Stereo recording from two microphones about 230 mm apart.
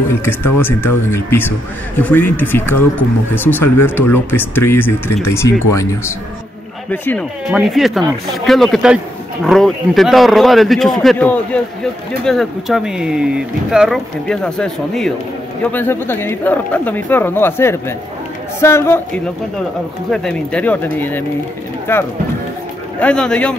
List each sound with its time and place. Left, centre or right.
0.2 s speech: centre
6.9 s a man's voice: centre